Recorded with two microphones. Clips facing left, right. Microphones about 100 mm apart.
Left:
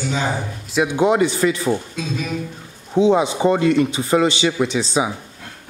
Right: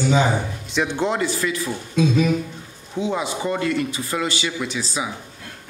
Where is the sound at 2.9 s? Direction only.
20° left (ahead or behind).